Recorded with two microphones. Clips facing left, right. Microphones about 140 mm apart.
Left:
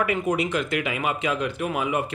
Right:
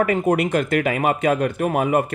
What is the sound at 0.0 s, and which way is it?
Speech, 45° right (ahead or behind).